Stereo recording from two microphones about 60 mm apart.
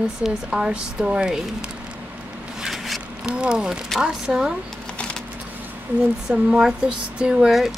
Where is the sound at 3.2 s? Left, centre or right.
Centre.